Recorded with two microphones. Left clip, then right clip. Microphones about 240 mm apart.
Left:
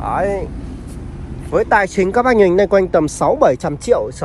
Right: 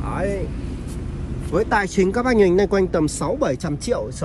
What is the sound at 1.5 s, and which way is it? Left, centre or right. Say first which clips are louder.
Speech: left 6 dB; centre.